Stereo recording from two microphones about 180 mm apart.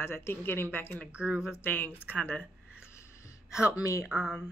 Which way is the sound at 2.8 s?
15° left (ahead or behind).